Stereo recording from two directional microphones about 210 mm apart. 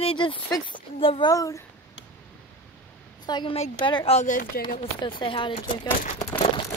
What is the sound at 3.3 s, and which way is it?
Speech, 25° left (ahead or behind).